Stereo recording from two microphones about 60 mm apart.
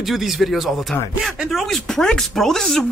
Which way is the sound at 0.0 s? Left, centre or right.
Centre.